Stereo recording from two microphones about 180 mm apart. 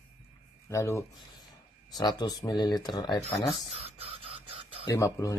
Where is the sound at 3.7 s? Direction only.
35° right (ahead or behind).